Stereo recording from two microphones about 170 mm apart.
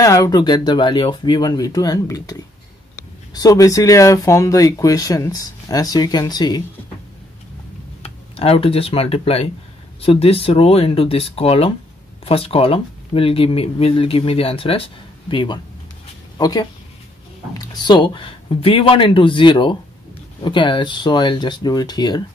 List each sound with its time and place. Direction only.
0.0 s speech: 20° left (ahead or behind)
8.0 s speech: 35° left (ahead or behind)